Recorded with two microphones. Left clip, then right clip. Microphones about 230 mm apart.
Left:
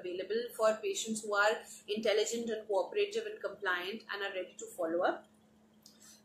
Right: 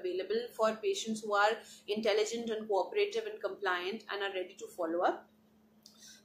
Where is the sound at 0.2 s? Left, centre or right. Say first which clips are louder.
Left 1 dB; centre.